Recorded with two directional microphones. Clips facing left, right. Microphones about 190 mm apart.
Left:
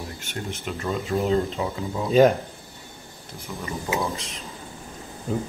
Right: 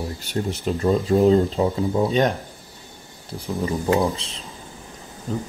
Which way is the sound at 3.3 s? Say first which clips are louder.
Right 8 dB; 30° right (ahead or behind).